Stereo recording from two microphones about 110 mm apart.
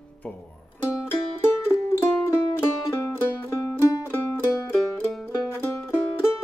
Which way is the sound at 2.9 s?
20° left (ahead or behind).